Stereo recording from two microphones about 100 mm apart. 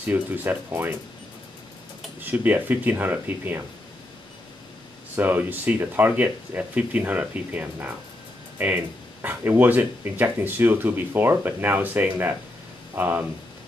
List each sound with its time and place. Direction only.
0.0 s speech: 15° right (ahead or behind)
2.2 s speech: 15° right (ahead or behind)
5.1 s speech: 20° right (ahead or behind)